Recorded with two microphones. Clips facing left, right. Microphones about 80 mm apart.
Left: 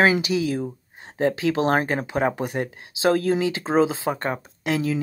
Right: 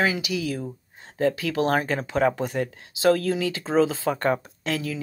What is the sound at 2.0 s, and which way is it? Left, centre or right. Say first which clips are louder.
Speech: right 1 dB; left.